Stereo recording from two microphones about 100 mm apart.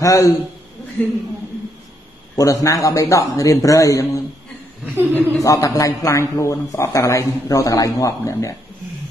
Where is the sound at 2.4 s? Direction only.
35° left (ahead or behind).